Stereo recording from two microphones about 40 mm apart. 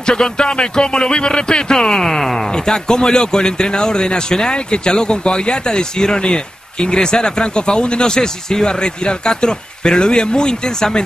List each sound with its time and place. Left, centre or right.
0.0 s speech: centre
2.5 s speech: centre